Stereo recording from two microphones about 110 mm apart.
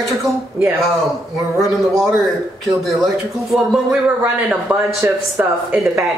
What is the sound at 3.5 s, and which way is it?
Speech, centre (ahead or behind).